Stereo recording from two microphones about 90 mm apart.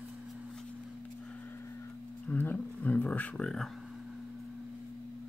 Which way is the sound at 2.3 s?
20° left (ahead or behind).